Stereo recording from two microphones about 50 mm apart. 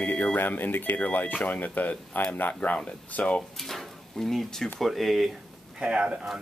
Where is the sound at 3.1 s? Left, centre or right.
Left.